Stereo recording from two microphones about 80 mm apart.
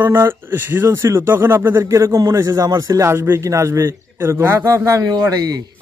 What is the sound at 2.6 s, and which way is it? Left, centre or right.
Speech, right.